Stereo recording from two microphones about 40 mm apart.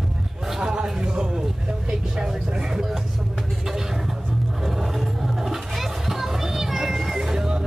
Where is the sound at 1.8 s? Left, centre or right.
Centre.